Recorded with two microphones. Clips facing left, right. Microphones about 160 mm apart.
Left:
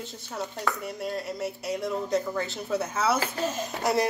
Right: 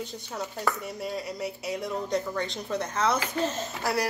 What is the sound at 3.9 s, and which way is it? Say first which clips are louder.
Speech: left 3 dB; 20° left (ahead or behind).